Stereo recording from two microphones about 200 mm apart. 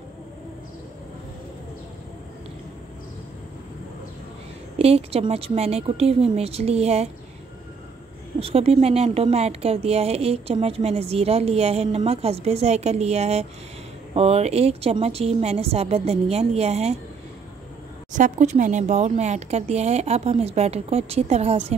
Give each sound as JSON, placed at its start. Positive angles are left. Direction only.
{"t": 4.7, "sound": "speech", "side_deg": -30}
{"t": 8.4, "sound": "speech", "side_deg": -30}
{"t": 18.1, "sound": "speech", "side_deg": -40}